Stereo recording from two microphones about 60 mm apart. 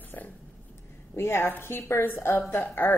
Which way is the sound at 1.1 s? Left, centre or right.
Left.